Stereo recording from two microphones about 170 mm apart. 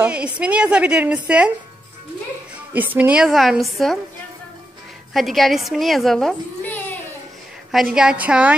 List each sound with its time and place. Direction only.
0.0 s a woman's voice: 5° right (ahead or behind)
2.7 s a child's voice: 10° right (ahead or behind)
5.1 s a child's voice: centre (ahead or behind)
7.7 s a child's voice: 5° right (ahead or behind)